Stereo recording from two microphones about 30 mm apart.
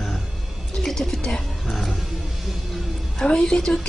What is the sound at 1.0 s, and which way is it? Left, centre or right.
Roaring cats, centre.